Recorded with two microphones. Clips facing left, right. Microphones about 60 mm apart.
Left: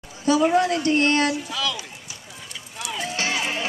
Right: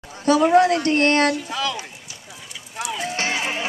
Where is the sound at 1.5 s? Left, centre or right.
Right.